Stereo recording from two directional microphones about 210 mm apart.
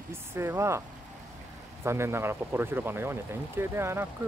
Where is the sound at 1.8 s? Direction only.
10° right (ahead or behind).